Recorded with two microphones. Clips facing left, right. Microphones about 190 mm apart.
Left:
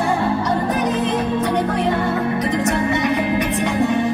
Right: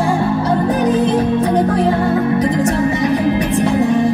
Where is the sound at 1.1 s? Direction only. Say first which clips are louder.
Right 5 dB; 35° right (ahead or behind).